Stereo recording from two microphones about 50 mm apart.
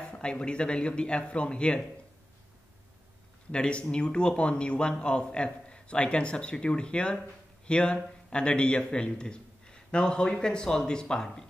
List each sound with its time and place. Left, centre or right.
0.1 s a man's voice: centre
3.5 s a man's voice: left